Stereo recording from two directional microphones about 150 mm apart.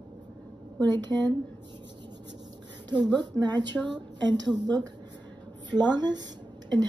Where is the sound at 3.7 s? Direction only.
Centre (ahead or behind).